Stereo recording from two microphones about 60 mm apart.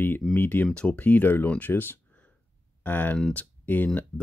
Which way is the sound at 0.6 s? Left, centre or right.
Centre.